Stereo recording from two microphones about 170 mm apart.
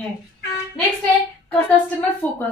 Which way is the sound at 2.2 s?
10° left (ahead or behind).